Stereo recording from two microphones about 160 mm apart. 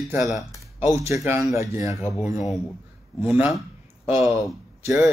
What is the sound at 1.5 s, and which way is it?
Speech, 20° right (ahead or behind).